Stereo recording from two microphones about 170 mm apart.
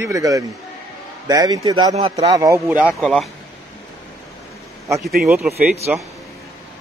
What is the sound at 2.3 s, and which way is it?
Speech, 20° right (ahead or behind).